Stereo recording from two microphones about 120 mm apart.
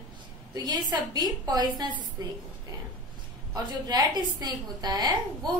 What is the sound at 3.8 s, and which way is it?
A woman's voice, 35° right (ahead or behind).